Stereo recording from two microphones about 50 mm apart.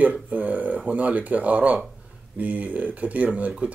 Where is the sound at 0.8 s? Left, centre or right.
Right.